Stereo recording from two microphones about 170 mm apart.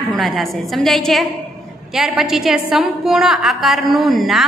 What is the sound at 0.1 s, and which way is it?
A woman's voice, centre (ahead or behind).